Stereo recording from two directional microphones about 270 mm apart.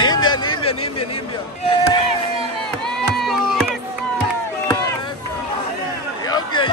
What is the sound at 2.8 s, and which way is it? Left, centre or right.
Crowd, centre.